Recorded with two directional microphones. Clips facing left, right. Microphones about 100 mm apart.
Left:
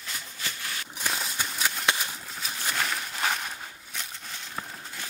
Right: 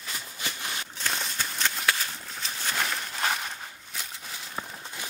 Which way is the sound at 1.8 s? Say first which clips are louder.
Even; 15° left (ahead or behind).